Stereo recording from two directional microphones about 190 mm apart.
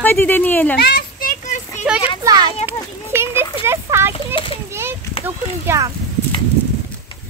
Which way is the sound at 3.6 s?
15° right (ahead or behind).